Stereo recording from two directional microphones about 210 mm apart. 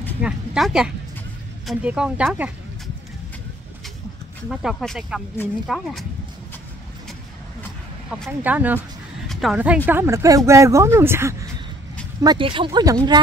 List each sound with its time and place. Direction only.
0.2 s speech: centre (ahead or behind)
4.5 s speech: centre (ahead or behind)
8.1 s speech: 5° right (ahead or behind)